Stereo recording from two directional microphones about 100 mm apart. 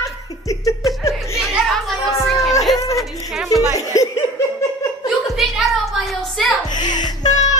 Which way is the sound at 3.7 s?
35° left (ahead or behind).